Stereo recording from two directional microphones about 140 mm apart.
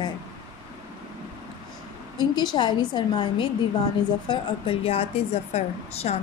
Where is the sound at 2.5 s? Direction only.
30° left (ahead or behind); by 6.2 s 50° left (ahead or behind).